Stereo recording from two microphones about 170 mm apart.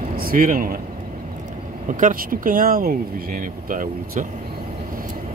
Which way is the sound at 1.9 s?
50° right (ahead or behind).